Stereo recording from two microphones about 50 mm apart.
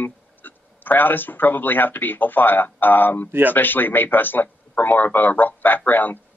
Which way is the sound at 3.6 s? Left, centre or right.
Left.